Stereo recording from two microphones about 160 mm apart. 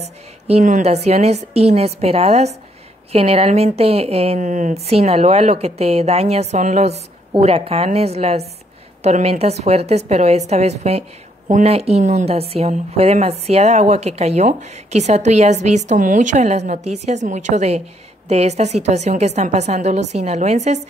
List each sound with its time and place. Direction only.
0.5 s a woman's voice: 45° right (ahead or behind)